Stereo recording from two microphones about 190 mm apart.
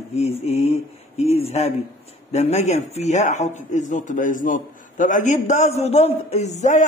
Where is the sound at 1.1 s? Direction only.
35° left (ahead or behind).